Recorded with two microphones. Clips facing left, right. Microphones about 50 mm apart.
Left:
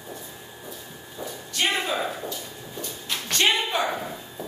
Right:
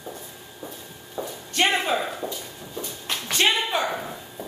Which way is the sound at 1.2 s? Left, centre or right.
Right.